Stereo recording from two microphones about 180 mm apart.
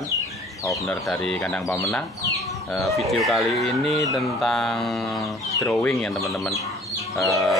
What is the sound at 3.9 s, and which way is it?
Speech, 20° left (ahead or behind).